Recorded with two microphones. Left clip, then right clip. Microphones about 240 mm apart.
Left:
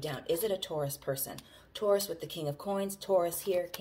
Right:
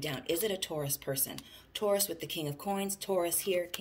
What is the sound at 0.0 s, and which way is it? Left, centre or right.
Speech, right.